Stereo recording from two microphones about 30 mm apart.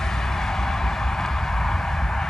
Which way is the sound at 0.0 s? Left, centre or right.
Centre.